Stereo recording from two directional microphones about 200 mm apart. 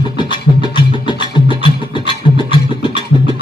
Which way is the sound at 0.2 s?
25° left (ahead or behind).